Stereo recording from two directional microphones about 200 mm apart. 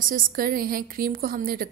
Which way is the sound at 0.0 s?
45° right (ahead or behind).